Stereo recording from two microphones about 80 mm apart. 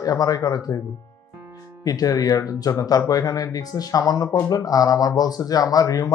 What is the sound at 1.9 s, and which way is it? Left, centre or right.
Speech, left.